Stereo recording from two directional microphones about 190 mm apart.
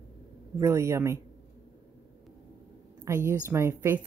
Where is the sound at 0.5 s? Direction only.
15° right (ahead or behind).